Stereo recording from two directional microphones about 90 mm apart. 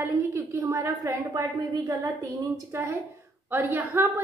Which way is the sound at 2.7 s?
30° right (ahead or behind).